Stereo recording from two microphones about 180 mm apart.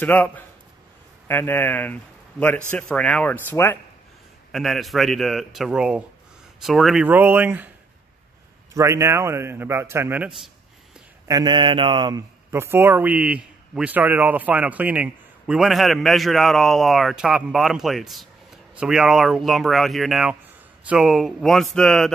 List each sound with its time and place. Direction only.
0.0 s speech: 10° left (ahead or behind)
4.5 s a man's voice: centre (ahead or behind)
8.7 s a man's voice: 15° right (ahead or behind)
11.2 s a man's voice: 25° right (ahead or behind); by 22.1 s centre (ahead or behind)